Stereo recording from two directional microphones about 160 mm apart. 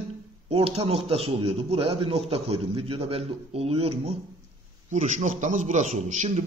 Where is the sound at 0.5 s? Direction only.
40° right (ahead or behind).